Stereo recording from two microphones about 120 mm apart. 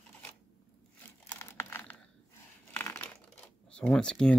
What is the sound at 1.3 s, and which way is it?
Crumpling, 20° left (ahead or behind).